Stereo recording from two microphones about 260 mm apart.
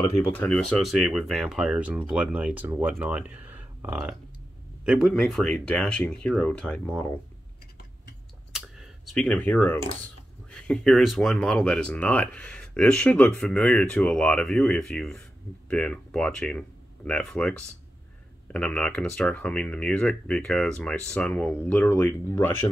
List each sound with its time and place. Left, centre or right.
0.3 s speech: centre
8.5 s computer keyboard: centre
10.0 s speech: centre